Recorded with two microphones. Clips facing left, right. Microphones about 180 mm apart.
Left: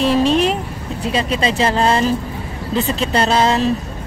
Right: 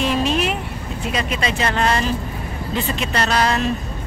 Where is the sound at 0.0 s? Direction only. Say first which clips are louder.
Left 5 dB; 35° left (ahead or behind).